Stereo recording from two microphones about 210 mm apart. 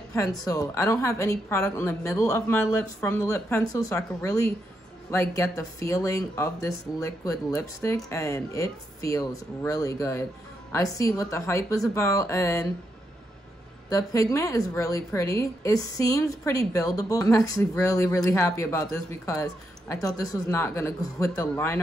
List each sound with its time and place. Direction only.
0.1 s a woman's voice: 15° left (ahead or behind)
13.8 s a woman's voice: 15° left (ahead or behind)